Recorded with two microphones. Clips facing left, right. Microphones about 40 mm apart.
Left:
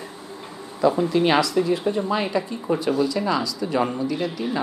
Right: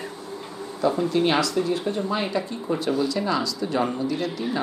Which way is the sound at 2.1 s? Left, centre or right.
Centre.